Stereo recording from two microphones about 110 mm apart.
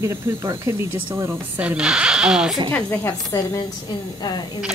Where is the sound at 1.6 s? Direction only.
10° right (ahead or behind).